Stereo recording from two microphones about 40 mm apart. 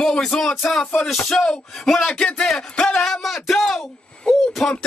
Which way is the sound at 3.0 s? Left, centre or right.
Centre.